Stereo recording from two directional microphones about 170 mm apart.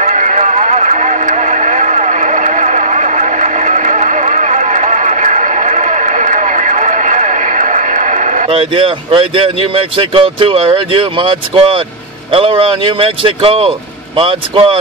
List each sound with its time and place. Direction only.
0.0 s radio: 45° right (ahead or behind)
12.3 s speech: 35° right (ahead or behind)